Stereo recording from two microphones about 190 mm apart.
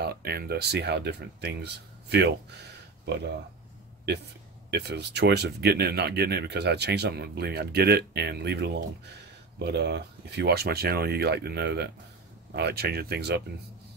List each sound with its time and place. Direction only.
0.0 s speech: 55° right (ahead or behind)
4.6 s speech: 60° right (ahead or behind)